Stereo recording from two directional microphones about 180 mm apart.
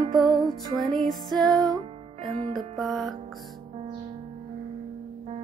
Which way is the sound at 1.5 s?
20° right (ahead or behind).